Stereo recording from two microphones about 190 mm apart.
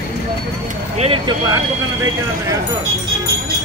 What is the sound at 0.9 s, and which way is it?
Speech, 30° right (ahead or behind).